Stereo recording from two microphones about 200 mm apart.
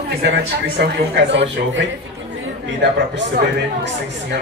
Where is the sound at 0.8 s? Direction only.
65° right (ahead or behind).